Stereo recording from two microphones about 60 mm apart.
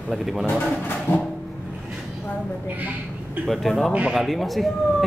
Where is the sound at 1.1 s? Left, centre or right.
Left.